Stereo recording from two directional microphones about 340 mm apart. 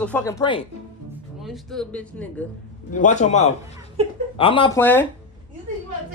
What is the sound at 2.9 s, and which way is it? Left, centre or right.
Speech, left.